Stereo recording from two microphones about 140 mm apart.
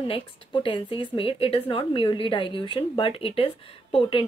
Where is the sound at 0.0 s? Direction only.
40° left (ahead or behind).